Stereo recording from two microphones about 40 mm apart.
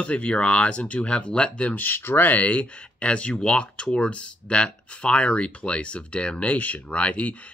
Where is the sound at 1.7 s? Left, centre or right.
Left.